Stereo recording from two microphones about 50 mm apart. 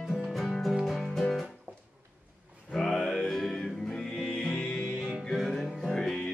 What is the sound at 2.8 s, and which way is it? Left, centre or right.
Music, centre.